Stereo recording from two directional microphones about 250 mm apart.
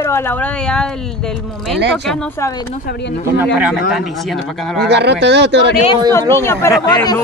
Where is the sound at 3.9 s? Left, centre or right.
Centre.